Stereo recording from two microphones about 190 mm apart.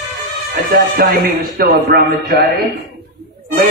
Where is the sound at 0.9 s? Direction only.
55° right (ahead or behind).